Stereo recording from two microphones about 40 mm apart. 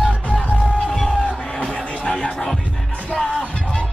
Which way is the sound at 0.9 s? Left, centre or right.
Centre.